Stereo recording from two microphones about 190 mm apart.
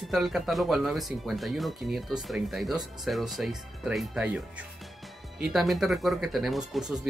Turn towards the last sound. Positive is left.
turn(degrees=-5)  # may be behind; listen again after turning